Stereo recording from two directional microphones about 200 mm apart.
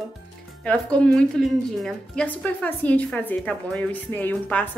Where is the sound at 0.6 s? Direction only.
5° left (ahead or behind).